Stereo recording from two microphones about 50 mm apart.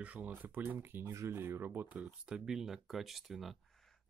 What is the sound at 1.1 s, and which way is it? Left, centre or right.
Speech, right.